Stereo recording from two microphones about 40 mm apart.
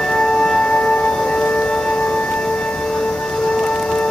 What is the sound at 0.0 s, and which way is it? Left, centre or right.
Music, centre.